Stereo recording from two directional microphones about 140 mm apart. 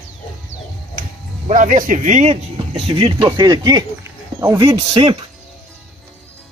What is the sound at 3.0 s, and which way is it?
Speech, 30° right (ahead or behind).